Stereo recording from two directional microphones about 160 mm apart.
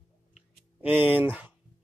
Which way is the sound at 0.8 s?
10° right (ahead or behind).